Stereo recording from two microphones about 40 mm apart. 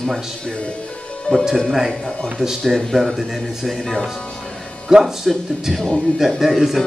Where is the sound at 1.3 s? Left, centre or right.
Left.